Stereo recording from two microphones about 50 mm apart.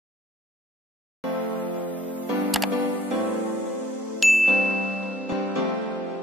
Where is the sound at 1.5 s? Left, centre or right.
Left.